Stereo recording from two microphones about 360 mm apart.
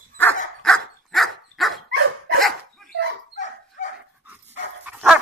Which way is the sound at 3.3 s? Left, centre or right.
Centre.